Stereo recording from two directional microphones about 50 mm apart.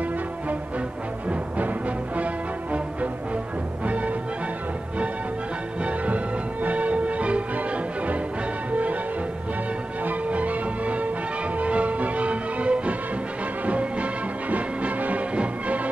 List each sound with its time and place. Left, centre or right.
0.0 s music: right
5.8 s music: right
10.0 s music: right